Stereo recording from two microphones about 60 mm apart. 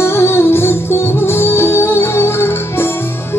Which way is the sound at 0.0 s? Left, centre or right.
Left.